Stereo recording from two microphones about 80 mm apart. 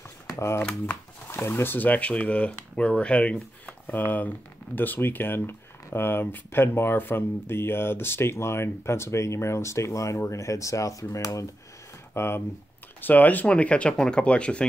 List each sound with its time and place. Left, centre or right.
0.3 s shuffling cards: left
0.6 s speech: centre
1.3 s speech: left
12.1 s speech: left; by 14.7 s centre